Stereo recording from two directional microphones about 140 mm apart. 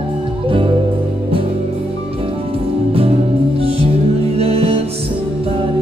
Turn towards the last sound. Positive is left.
turn(degrees=-45)  # may be behind; listen again after turning